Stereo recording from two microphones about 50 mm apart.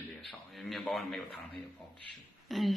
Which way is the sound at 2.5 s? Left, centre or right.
Centre.